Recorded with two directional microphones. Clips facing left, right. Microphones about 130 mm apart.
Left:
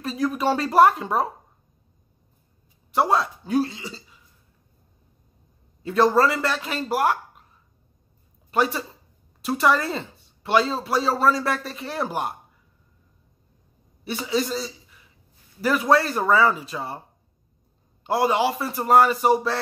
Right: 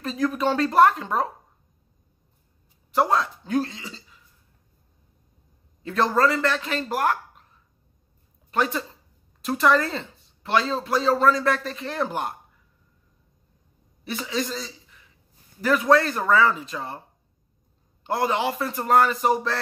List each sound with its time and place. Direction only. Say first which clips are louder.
0.0 s speech: even; 5° left (ahead or behind)
2.9 s a man's voice: left 1 dB; 5° left (ahead or behind)
5.8 s speech: left 3 dB; 5° left (ahead or behind)
8.5 s speech: left 2 dB; 5° left (ahead or behind)
14.0 s a man's voice: left 3 dB; 5° left (ahead or behind)
18.0 s speech: left 3 dB; 5° left (ahead or behind)